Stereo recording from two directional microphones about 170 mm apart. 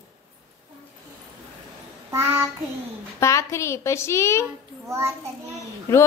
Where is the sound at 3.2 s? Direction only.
15° left (ahead or behind).